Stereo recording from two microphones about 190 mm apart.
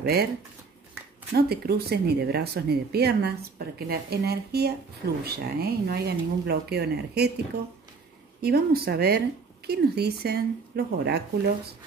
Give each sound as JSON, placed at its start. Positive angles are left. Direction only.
{"t": 0.0, "sound": "speech", "side_deg": -55}
{"t": 1.3, "sound": "speech", "side_deg": -55}
{"t": 8.4, "sound": "speech", "side_deg": -55}